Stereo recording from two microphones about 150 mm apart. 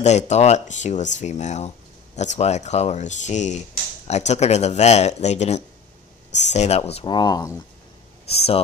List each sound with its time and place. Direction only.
0.0 s speech: 50° left (ahead or behind); by 7.5 s 25° left (ahead or behind)
8.3 s speech: 40° left (ahead or behind)